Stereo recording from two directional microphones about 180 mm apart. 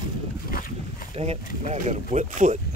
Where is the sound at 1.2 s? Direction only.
35° right (ahead or behind).